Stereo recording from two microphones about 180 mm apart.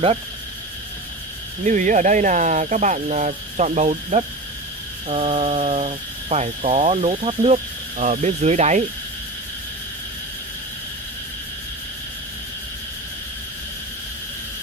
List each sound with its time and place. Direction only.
1.6 s speech: 45° right (ahead or behind)